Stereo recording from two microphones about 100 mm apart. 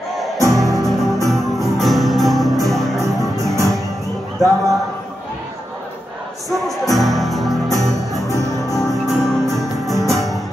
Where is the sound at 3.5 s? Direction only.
30° right (ahead or behind).